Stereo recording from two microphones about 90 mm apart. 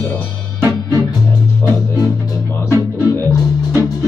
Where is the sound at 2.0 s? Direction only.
35° left (ahead or behind).